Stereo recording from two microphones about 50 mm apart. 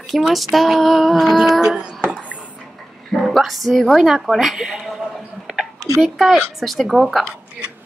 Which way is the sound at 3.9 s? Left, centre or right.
Centre.